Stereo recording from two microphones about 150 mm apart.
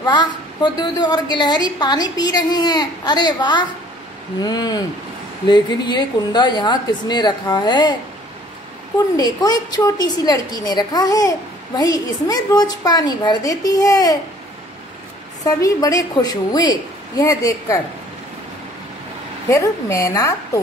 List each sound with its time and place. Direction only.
0.0 s a woman's voice: 30° left (ahead or behind)
9.4 s a woman's voice: 30° left (ahead or behind)
15.4 s a woman's voice: 25° left (ahead or behind)
19.5 s a woman's voice: 20° left (ahead or behind)